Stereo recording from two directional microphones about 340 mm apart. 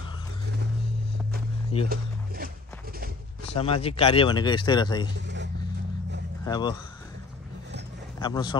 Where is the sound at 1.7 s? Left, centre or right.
Centre.